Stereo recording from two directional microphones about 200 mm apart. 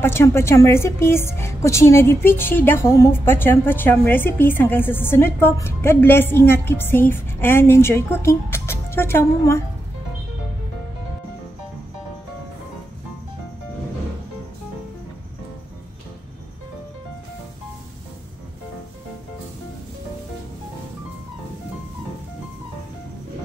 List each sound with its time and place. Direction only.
0.0 s speech: 10° left (ahead or behind)